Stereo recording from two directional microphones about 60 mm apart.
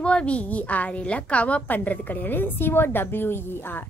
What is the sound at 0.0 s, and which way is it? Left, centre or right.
A woman's voice, centre.